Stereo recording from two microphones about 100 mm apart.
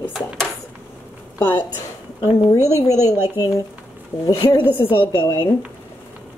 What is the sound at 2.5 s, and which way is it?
A woman's voice, 35° left (ahead or behind).